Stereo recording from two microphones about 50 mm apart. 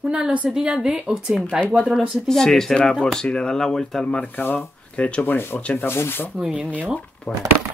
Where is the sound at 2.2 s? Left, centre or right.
Centre.